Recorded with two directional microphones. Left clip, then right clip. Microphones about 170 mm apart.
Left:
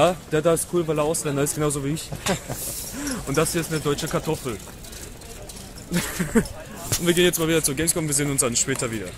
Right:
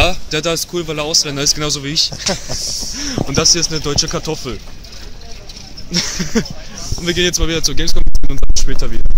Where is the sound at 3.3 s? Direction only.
30° right (ahead or behind).